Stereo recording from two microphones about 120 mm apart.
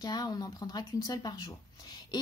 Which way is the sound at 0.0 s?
35° left (ahead or behind).